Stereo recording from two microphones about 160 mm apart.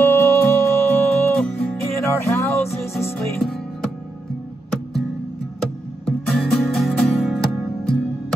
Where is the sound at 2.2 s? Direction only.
15° left (ahead or behind).